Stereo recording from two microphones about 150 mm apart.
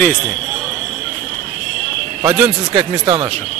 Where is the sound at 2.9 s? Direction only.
30° right (ahead or behind).